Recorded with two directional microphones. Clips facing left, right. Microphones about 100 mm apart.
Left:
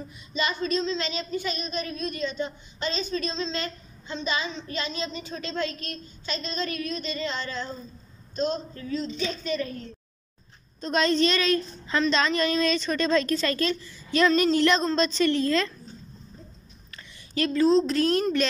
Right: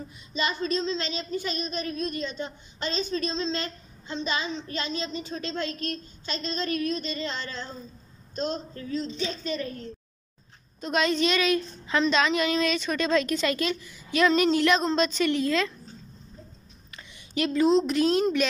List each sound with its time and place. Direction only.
0.3 s a woman's voice: 30° right (ahead or behind)
10.8 s a woman's voice: 5° right (ahead or behind)
16.9 s a woman's voice: 15° right (ahead or behind)